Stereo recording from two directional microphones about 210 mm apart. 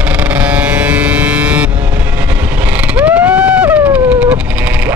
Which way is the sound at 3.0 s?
5° right (ahead or behind).